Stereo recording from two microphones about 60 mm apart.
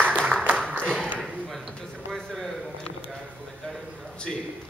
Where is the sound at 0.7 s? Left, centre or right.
Centre.